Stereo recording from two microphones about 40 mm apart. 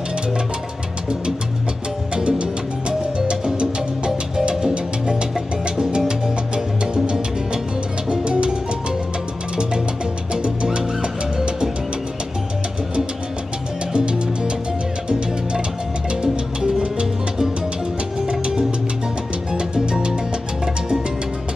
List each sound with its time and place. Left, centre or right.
2.1 s music: right
8.1 s music: right
10.3 s music: right
13.9 s music: right